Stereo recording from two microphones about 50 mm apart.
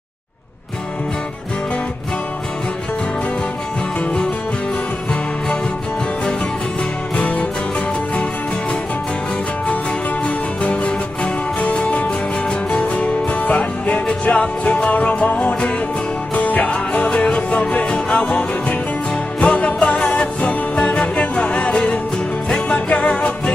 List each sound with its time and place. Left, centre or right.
7.2 s music: left
10.2 s music: left